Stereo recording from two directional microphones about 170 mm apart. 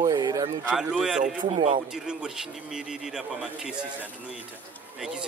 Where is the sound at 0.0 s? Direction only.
25° right (ahead or behind).